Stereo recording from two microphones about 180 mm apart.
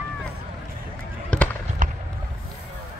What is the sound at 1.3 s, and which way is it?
Basketball bounce, 5° left (ahead or behind).